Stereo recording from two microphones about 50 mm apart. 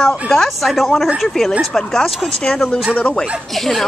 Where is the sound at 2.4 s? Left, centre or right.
Centre.